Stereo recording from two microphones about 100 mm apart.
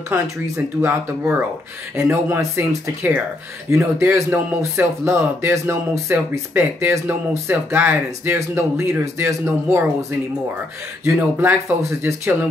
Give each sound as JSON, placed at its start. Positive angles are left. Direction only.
{"t": 0.7, "sound": "speech", "side_deg": -25}
{"t": 11.1, "sound": "speech", "side_deg": -20}